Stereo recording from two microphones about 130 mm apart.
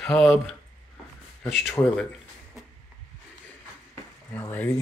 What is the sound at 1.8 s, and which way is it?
Speech, 15° left (ahead or behind).